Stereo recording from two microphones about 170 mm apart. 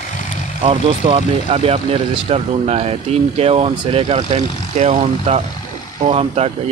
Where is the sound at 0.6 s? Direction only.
35° right (ahead or behind).